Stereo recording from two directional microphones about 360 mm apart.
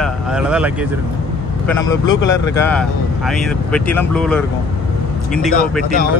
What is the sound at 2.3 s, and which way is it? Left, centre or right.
Speech, centre.